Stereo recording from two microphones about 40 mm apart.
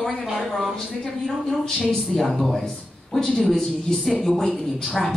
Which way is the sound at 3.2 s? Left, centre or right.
Centre.